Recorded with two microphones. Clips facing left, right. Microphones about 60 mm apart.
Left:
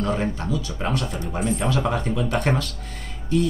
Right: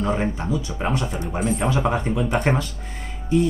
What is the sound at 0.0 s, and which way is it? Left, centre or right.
Speech, centre.